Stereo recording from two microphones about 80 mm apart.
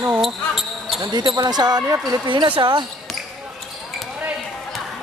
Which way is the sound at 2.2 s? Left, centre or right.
Right.